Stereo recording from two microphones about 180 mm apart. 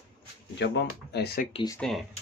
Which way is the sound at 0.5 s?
75° left (ahead or behind).